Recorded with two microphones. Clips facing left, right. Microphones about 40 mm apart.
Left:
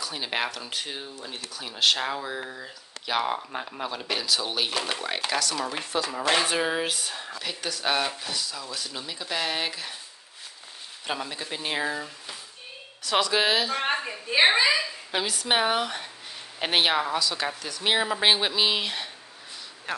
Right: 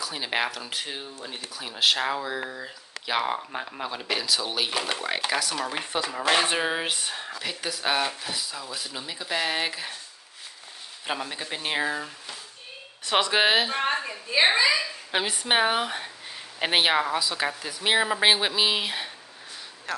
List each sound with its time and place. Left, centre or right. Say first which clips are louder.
0.0 s speech: right 1 dB; centre; by 7.2 s right
7.2 s speech: right 1 dB; centre
8.4 s speech: even; centre
11.1 s speech: right 1 dB; centre
13.0 s speech: right 1 dB; right
13.8 s a sound: even; centre
15.0 s speech: right 1 dB; right
15.4 s speech: right 1 dB; centre
19.9 s speech: even; centre